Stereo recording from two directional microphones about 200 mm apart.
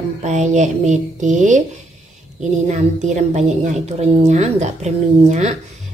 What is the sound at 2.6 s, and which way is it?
A woman's voice, 35° right (ahead or behind).